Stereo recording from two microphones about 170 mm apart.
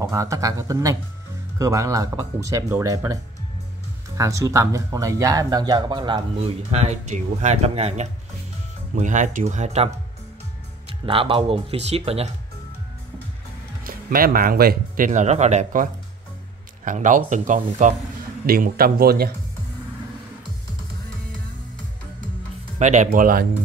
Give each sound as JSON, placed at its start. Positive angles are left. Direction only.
{"t": 0.1, "sound": "speech", "side_deg": -20}
{"t": 4.2, "sound": "speech", "side_deg": -20}
{"t": 6.7, "sound": "speech", "side_deg": -40}
{"t": 11.1, "sound": "speech", "side_deg": -30}
{"t": 13.8, "sound": "speech", "side_deg": -55}
{"t": 18.5, "sound": "speech", "side_deg": -60}
{"t": 22.8, "sound": "speech", "side_deg": -45}